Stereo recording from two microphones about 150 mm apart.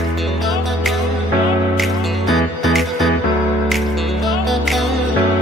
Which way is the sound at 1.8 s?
Centre (ahead or behind).